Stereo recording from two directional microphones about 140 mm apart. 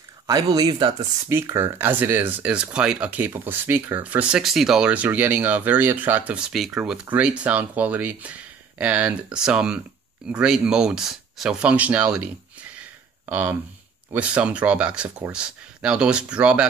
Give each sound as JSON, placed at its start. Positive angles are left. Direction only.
{"t": 0.3, "sound": "speech", "side_deg": -25}
{"t": 1.3, "sound": "speech", "side_deg": -15}